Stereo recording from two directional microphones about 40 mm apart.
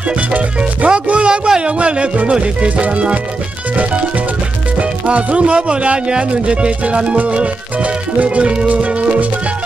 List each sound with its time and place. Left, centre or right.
0.8 s speech: right
4.7 s speech: right
8.7 s music: right